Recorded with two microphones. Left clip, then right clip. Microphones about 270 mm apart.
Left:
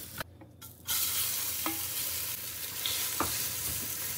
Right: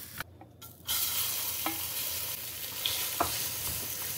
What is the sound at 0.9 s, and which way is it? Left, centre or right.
Stir, centre.